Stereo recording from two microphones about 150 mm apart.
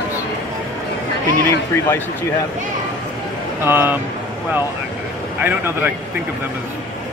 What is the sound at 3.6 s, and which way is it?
Speech, 15° right (ahead or behind).